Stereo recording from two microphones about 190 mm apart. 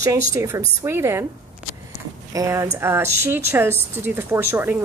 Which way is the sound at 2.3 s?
15° right (ahead or behind).